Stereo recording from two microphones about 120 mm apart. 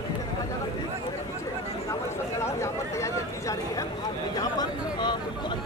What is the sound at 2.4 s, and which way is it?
Chatter, 25° left (ahead or behind).